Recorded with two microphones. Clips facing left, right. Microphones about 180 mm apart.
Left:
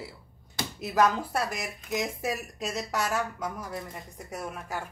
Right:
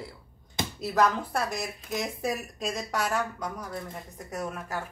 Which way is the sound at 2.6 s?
5° left (ahead or behind).